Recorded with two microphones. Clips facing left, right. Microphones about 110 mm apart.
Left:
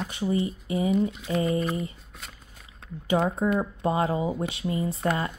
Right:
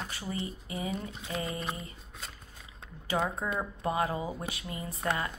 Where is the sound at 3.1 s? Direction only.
20° left (ahead or behind).